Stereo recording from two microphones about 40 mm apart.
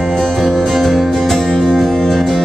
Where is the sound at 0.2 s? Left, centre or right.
Centre.